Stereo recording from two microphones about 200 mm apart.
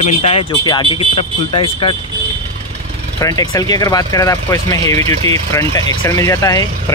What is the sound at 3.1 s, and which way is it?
Speech, 20° left (ahead or behind).